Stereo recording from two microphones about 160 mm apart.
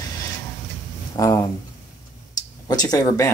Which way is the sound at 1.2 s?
20° left (ahead or behind).